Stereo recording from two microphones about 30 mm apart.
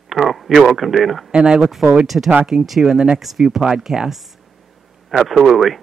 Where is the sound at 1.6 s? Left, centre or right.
Centre.